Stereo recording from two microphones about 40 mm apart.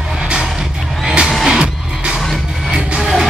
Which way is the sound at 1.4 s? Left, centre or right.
Right.